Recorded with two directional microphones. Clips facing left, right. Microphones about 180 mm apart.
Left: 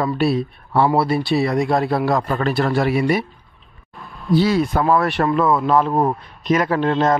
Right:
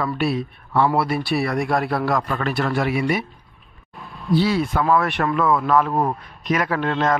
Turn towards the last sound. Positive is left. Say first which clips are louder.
# left 4 dB
turn(degrees=30)  # may be behind; listen again after turning